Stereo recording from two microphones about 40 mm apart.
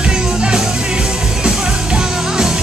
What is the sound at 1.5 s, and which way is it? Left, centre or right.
Music, centre.